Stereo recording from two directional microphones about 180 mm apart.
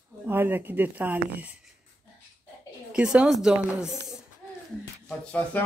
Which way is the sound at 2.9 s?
5° right (ahead or behind).